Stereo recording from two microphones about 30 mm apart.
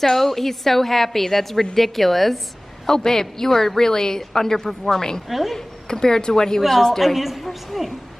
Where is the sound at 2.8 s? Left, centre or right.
Centre.